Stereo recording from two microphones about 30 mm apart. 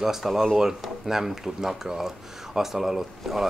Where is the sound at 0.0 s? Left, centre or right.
Centre.